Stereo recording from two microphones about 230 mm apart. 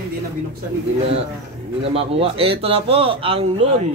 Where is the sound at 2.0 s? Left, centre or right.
Right.